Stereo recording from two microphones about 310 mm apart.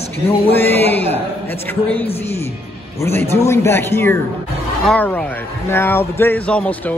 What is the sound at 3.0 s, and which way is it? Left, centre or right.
A man's voice, centre.